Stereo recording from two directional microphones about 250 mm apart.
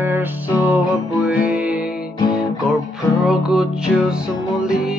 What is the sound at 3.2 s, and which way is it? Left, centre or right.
Music, centre.